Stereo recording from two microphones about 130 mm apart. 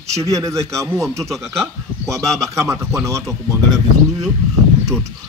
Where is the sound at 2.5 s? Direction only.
20° right (ahead or behind).